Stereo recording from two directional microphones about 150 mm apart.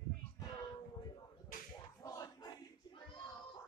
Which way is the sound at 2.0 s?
25° left (ahead or behind).